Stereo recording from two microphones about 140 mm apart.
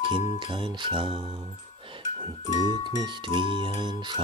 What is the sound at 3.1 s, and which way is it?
Music, 35° right (ahead or behind).